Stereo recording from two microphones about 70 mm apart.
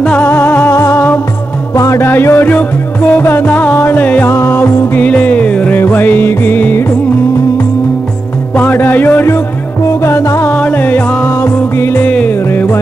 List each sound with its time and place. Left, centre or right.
0.0 s music: left
0.7 s music: left
4.3 s music: left
5.0 s music: left
8.5 s music: left
10.0 s music: left
10.5 s music: left
11.2 s music: left
12.0 s music: centre
12.3 s music: left